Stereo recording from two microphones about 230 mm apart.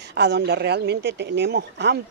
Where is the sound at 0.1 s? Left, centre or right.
Right.